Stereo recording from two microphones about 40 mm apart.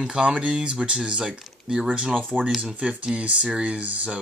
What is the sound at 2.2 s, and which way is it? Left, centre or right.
Speech, right.